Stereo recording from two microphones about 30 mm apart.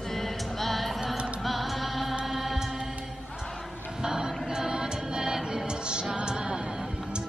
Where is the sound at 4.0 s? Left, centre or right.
Centre.